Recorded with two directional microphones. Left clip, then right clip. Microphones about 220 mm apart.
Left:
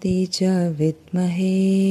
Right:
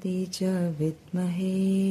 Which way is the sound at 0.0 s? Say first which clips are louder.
Left 8 dB; 35° left (ahead or behind).